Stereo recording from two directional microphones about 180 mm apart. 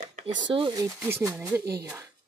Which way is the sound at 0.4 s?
25° right (ahead or behind).